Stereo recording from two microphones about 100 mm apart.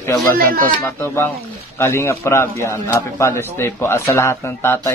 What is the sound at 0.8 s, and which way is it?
A man's voice, 25° left (ahead or behind).